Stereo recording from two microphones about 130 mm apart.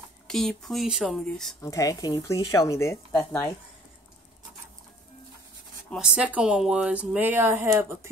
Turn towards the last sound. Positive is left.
turn(degrees=-20)  # may be behind; listen again after turning